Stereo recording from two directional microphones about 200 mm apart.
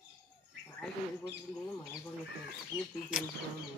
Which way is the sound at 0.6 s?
10° left (ahead or behind).